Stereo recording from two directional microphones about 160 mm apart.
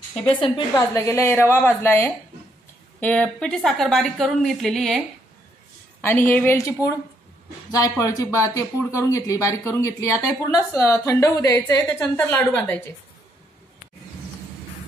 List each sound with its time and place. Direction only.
0.1 s a woman's voice: 5° left (ahead or behind)
0.4 s a woman's voice: 20° left (ahead or behind); by 5.0 s centre (ahead or behind)
5.9 s a woman's voice: 10° left (ahead or behind)
7.7 s speech: 20° left (ahead or behind)